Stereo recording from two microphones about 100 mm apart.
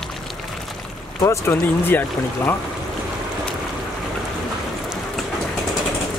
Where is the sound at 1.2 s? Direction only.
30° left (ahead or behind).